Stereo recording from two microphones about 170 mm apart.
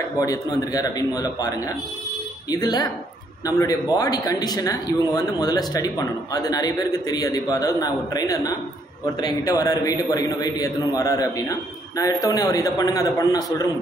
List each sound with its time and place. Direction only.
0.2 s speech: 20° left (ahead or behind)
2.5 s speech: 20° left (ahead or behind)